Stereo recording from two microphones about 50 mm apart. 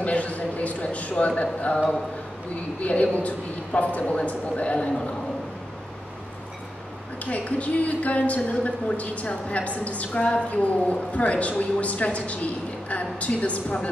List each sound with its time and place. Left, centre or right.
0.0 s a sound: left
2.8 s a woman's voice: left
7.2 s a woman's voice: left